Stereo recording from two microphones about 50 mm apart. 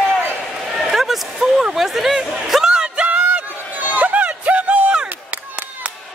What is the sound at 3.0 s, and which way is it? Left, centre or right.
Music, right.